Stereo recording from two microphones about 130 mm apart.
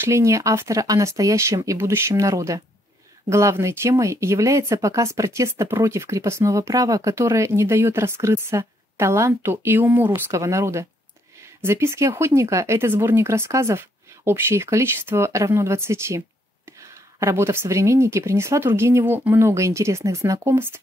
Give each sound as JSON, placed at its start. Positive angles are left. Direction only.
{"t": 0.0, "sound": "speech", "side_deg": -20}